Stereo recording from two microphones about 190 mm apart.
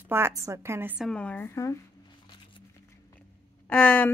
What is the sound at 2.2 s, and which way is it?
Music, 25° left (ahead or behind).